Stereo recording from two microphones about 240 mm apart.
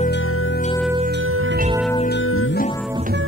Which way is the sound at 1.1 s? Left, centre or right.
Right.